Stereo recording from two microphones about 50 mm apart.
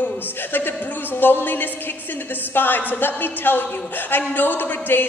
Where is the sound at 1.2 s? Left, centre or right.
Left.